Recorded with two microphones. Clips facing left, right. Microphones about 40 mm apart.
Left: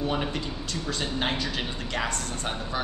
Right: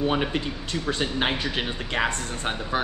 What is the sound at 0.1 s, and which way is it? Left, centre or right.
Speech, right.